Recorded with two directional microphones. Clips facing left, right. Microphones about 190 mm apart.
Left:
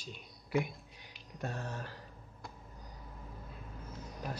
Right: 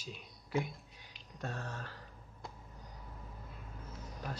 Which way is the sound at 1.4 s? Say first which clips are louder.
Left 2 dB; 10° left (ahead or behind).